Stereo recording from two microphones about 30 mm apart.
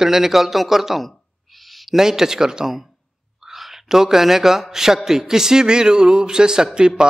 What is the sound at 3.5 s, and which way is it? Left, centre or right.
A man's voice, centre.